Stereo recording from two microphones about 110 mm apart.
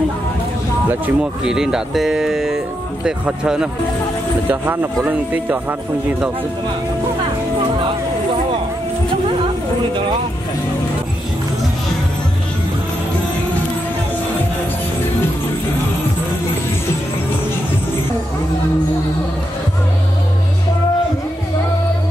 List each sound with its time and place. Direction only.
0.8 s speech: 15° right (ahead or behind)
1.4 s speech: 5° right (ahead or behind)
5.0 s speech: 15° right (ahead or behind)